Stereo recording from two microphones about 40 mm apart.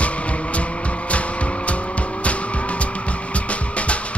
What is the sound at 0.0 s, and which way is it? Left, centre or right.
Music, left.